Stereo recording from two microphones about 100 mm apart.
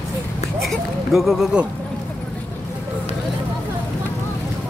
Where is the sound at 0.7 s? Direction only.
Centre (ahead or behind).